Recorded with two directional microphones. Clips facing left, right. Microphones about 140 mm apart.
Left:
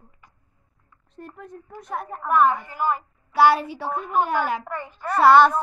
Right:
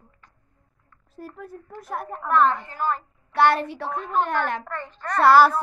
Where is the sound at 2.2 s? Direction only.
10° left (ahead or behind).